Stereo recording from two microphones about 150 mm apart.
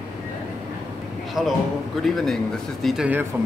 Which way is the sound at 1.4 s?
Centre (ahead or behind).